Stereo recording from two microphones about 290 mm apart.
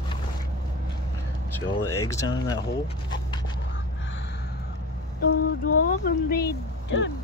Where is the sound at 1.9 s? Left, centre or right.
Centre.